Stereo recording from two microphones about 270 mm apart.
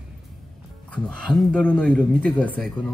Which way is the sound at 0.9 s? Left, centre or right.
Centre.